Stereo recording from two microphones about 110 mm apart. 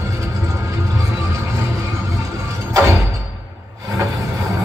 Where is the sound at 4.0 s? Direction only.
30° right (ahead or behind).